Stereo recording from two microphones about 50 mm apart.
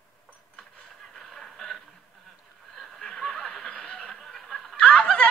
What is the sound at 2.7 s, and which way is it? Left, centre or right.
Snicker, centre.